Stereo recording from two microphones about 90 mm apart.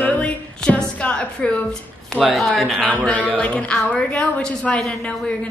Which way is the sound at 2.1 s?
Centre (ahead or behind).